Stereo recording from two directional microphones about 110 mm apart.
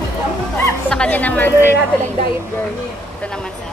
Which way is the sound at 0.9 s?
10° left (ahead or behind).